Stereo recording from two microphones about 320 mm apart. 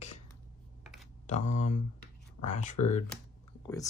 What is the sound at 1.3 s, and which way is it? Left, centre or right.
Speech, left.